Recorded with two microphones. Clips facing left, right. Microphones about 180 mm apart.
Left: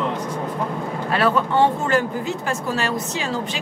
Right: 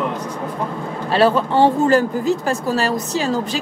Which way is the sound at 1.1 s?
30° right (ahead or behind).